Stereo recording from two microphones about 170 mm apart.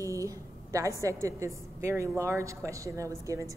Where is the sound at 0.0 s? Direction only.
20° right (ahead or behind).